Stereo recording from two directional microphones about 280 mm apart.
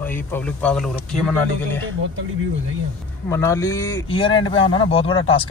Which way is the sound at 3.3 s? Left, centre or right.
Centre.